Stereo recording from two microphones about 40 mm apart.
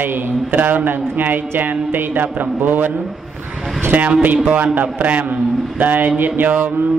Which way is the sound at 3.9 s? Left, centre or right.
Right.